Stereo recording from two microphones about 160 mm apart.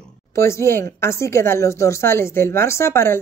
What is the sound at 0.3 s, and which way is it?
Speech, 15° left (ahead or behind).